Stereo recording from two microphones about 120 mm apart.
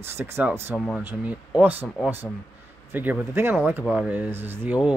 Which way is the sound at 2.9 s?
15° right (ahead or behind).